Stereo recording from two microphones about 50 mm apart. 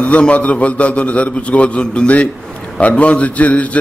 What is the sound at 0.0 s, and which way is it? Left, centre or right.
A man's voice, left.